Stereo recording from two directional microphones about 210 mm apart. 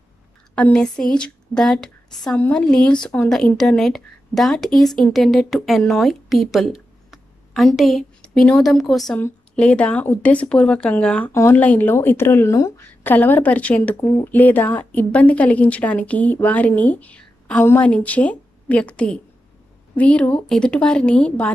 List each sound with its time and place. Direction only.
0.6 s speech: 5° left (ahead or behind)